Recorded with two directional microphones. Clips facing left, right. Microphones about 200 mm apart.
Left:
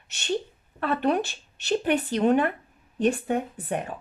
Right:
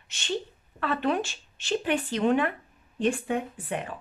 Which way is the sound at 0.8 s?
60° left (ahead or behind).